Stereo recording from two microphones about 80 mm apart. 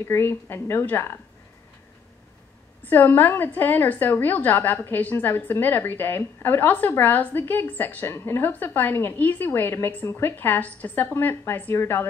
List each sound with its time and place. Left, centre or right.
0.0 s a woman's voice: left
2.8 s a woman's voice: left